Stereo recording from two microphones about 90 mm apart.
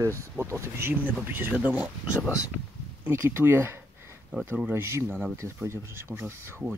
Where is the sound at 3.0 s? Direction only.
25° right (ahead or behind).